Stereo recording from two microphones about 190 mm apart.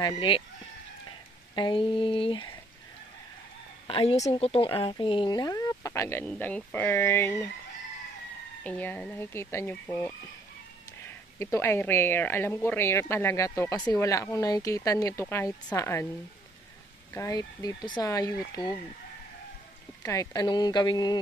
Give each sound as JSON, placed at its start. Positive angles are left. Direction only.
{"t": 0.0, "sound": "speech", "side_deg": 25}
{"t": 1.5, "sound": "speech", "side_deg": 25}
{"t": 3.8, "sound": "a woman's voice", "side_deg": 30}
{"t": 8.6, "sound": "speech", "side_deg": 10}
{"t": 11.3, "sound": "speech", "side_deg": 15}
{"t": 17.1, "sound": "speech", "side_deg": 15}
{"t": 20.0, "sound": "speech", "side_deg": 15}